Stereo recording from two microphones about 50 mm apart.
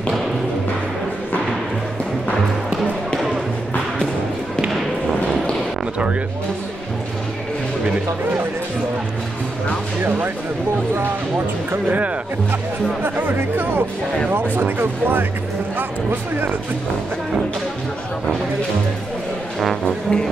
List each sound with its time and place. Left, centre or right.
11.0 s speech: right
13.1 s speech: right
16.1 s speech: right
19.8 s music: centre